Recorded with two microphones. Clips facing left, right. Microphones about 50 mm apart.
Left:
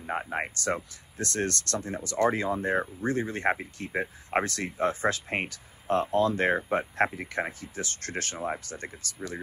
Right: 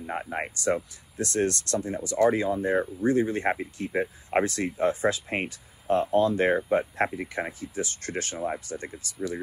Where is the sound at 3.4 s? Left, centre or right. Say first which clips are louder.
Even; centre.